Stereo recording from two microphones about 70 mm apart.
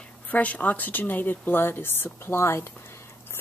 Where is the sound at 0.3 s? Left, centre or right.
Left.